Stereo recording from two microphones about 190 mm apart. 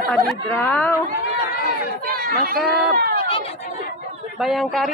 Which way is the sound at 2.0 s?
50° right (ahead or behind).